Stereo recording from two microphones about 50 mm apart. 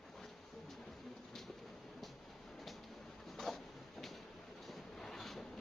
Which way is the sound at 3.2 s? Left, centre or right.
Centre.